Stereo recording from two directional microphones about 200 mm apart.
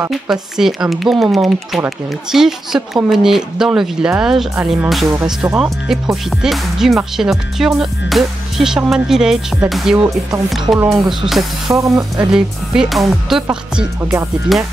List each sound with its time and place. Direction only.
0.1 s speech: centre (ahead or behind)
11.6 s speech: 15° right (ahead or behind)
12.3 s speech: 5° right (ahead or behind)